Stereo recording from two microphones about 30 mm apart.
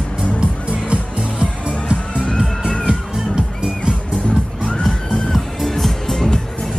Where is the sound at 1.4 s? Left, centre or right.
Right.